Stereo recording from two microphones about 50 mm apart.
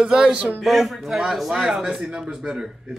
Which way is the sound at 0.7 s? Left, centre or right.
Centre.